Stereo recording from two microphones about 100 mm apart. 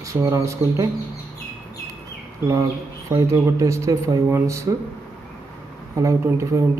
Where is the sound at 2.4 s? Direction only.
30° right (ahead or behind).